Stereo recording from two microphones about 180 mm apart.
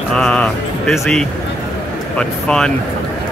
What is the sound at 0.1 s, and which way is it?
Speech, 5° left (ahead or behind).